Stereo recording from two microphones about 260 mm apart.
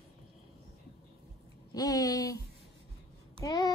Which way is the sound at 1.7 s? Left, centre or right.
Centre.